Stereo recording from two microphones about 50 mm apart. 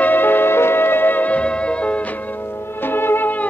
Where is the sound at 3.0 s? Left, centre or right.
Left.